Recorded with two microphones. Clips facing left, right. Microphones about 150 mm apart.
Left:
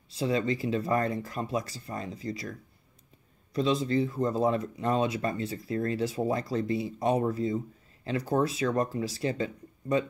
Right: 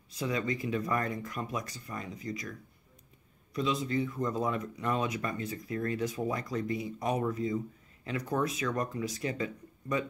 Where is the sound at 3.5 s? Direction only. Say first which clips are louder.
Left 5 dB; 35° left (ahead or behind).